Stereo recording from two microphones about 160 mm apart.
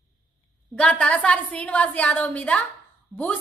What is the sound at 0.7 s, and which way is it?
A woman's voice, 5° left (ahead or behind).